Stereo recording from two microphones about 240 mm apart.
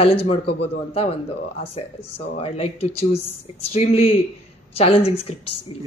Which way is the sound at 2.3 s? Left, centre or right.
Left.